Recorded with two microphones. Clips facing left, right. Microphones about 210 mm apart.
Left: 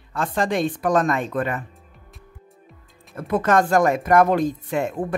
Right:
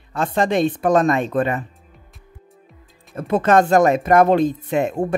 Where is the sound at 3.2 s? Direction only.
25° right (ahead or behind).